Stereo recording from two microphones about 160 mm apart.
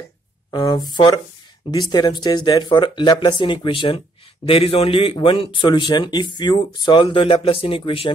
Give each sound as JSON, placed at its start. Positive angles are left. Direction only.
{"t": 0.5, "sound": "a man's voice", "side_deg": 25}